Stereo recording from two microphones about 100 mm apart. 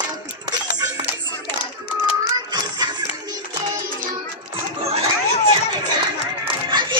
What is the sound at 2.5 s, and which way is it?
Music, 45° right (ahead or behind).